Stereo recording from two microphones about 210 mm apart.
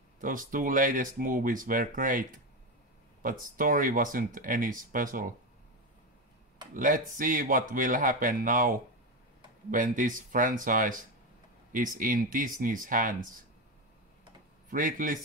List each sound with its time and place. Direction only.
0.2 s speech: 40° right (ahead or behind)
6.7 s speech: 40° right (ahead or behind)
14.7 s speech: 40° right (ahead or behind)